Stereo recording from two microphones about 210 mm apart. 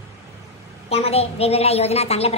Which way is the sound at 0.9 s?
30° left (ahead or behind).